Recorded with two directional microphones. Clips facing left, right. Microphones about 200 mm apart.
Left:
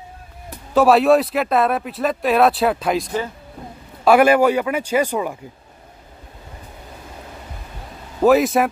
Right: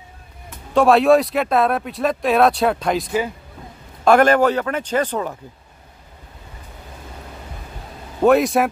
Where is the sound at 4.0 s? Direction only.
10° left (ahead or behind).